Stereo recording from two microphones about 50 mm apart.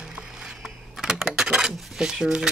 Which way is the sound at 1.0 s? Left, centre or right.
Centre.